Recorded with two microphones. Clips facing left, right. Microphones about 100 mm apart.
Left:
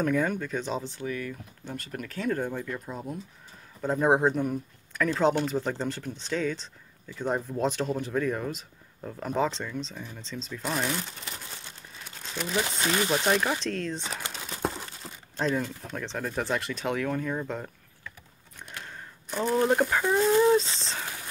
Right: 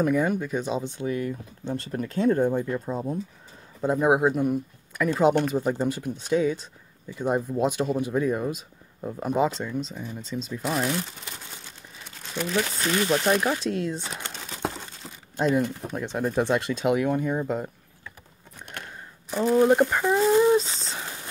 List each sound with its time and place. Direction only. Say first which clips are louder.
0.0 s speech: right 3 dB; 10° right (ahead or behind); by 3.2 s 30° right (ahead or behind)
3.8 s speech: right 2 dB; 10° right (ahead or behind)
10.6 s speech: right 3 dB; centre (ahead or behind)
12.0 s crumpling: right 4 dB; centre (ahead or behind)
12.5 s speech: right 2 dB; 15° left (ahead or behind)
13.2 s speech: right 3 dB; 5° right (ahead or behind)
14.2 s crumpling: left 1 dB; centre (ahead or behind)
15.3 s speech: right 5 dB; 15° right (ahead or behind)
17.5 s a sound: right 6 dB; 15° right (ahead or behind)
19.3 s speech: right 5 dB; 5° right (ahead or behind)